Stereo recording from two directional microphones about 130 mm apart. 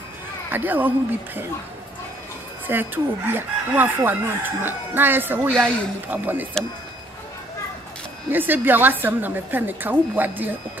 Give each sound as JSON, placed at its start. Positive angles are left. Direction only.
{"t": 0.5, "sound": "speech", "side_deg": -15}
{"t": 2.6, "sound": "speech", "side_deg": -15}
{"t": 8.3, "sound": "speech", "side_deg": -15}